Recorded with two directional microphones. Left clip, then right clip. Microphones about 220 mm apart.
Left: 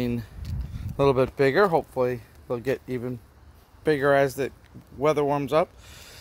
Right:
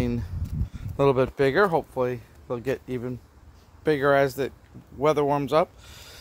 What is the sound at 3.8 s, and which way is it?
Speech, 5° left (ahead or behind).